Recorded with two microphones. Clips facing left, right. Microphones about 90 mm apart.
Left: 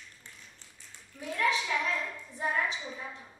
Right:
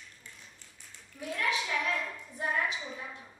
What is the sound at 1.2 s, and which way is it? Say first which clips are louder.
Clapping: left 3 dB; 30° left (ahead or behind).